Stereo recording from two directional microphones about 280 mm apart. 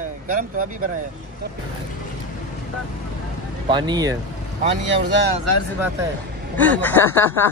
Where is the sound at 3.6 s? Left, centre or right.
Centre.